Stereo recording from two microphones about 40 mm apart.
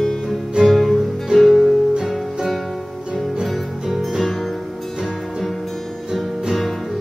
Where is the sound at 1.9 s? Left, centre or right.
Centre.